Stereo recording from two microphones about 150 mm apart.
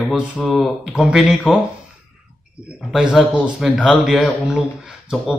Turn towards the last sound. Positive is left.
turn(degrees=-5)  # may be behind; listen again after turning